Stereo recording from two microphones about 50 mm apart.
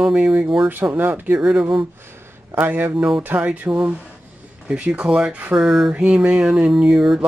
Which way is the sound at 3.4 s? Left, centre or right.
Right.